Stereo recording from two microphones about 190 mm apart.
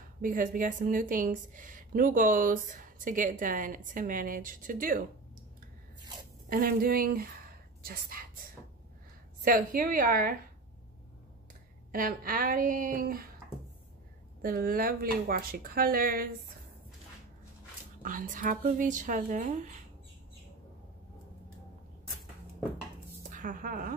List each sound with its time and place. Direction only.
0.2 s a woman's voice: 45° right (ahead or behind)
6.5 s a woman's voice: 50° right (ahead or behind)
11.9 s a woman's voice: 45° right (ahead or behind)
14.4 s a woman's voice: 50° right (ahead or behind)
18.0 s a woman's voice: 45° right (ahead or behind)
23.3 s a woman's voice: 45° right (ahead or behind)